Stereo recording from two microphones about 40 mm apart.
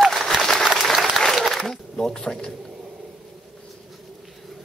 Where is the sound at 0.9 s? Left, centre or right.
Centre.